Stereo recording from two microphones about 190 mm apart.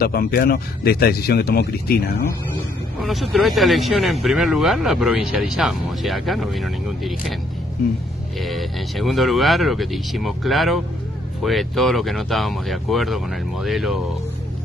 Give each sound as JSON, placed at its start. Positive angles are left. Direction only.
{"t": 0.0, "sound": "speech", "side_deg": 50}
{"t": 3.0, "sound": "speech", "side_deg": 0}
{"t": 8.4, "sound": "speech", "side_deg": 0}